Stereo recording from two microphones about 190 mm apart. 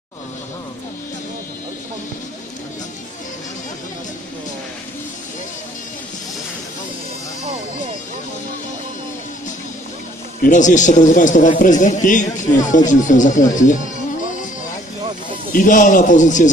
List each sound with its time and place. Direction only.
10.4 s a man's voice: 40° left (ahead or behind)
15.5 s a man's voice: 45° left (ahead or behind)